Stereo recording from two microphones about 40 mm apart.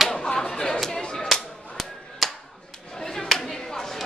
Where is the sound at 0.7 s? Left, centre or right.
Centre.